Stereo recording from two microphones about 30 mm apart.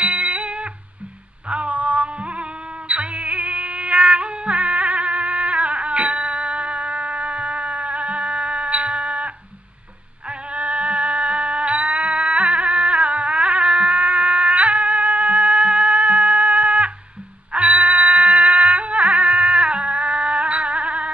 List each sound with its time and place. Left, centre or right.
0.0 s music: right
10.5 s music: right